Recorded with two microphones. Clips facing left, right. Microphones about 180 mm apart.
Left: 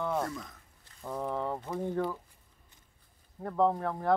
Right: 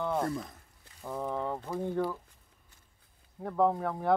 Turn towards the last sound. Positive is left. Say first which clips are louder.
# even
turn(degrees=-5)  # may be behind; listen again after turning